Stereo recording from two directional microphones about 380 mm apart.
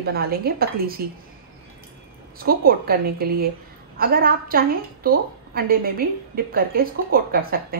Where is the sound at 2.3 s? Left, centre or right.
Right.